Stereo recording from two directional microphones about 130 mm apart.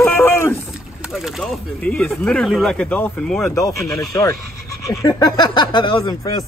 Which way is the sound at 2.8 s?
10° left (ahead or behind).